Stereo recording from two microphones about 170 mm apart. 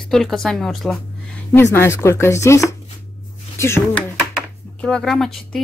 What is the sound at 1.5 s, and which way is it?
Speech, 15° left (ahead or behind).